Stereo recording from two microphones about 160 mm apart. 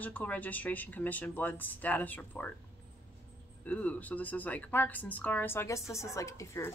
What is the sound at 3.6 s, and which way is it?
Speech, 10° left (ahead or behind).